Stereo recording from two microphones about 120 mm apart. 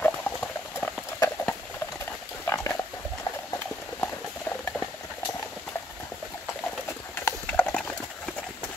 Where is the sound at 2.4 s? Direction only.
25° left (ahead or behind).